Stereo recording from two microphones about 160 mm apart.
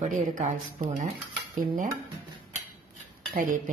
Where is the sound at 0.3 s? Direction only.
50° right (ahead or behind).